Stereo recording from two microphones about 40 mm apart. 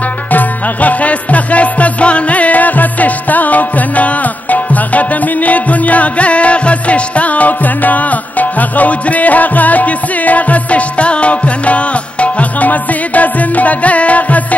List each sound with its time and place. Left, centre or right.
0.3 s music: left